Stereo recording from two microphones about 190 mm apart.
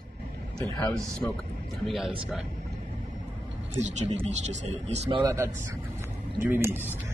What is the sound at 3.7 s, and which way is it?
Speech, 40° right (ahead or behind).